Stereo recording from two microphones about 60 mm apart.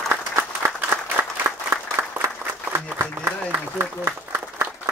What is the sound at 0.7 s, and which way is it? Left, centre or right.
Applause, right.